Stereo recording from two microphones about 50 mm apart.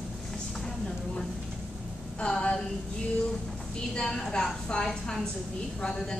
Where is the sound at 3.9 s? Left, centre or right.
Centre.